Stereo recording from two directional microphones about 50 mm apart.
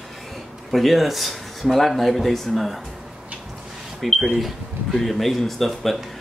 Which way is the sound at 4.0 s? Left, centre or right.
Centre.